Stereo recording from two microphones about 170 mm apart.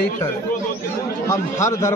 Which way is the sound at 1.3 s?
15° left (ahead or behind).